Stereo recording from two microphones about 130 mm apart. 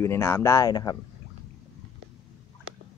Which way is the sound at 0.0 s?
20° left (ahead or behind).